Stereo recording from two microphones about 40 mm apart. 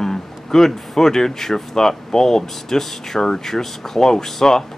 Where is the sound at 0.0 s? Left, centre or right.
Centre.